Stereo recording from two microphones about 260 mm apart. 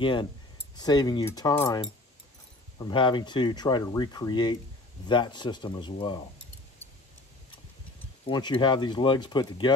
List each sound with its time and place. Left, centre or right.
0.0 s speech: centre
8.3 s speech: centre